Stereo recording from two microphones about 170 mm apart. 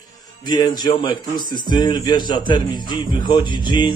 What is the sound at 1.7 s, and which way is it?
Music, 25° left (ahead or behind).